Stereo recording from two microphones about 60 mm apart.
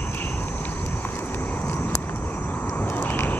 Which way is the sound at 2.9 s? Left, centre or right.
Left.